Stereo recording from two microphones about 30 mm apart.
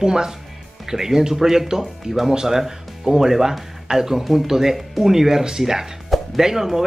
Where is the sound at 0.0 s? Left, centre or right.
Right.